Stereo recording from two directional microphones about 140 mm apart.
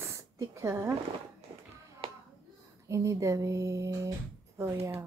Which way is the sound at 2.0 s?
40° right (ahead or behind).